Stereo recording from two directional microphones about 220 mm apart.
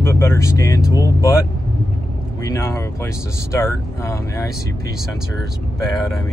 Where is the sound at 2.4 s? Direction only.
15° left (ahead or behind).